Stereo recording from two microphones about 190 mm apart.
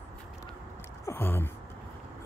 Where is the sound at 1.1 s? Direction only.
10° left (ahead or behind).